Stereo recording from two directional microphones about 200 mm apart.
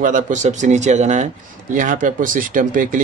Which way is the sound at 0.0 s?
40° right (ahead or behind).